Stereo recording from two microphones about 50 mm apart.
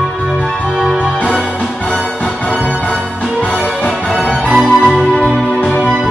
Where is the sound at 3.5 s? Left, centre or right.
Centre.